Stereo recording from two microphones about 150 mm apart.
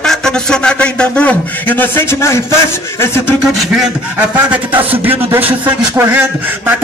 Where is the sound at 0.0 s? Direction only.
5° left (ahead or behind).